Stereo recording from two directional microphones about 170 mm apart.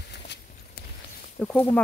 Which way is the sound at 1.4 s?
10° left (ahead or behind).